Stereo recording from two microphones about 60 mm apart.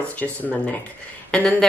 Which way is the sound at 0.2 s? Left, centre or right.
Left.